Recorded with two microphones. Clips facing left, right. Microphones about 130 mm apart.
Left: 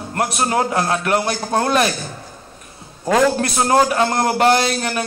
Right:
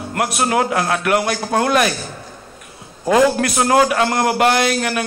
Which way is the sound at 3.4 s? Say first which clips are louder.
Right 1 dB; 30° left (ahead or behind).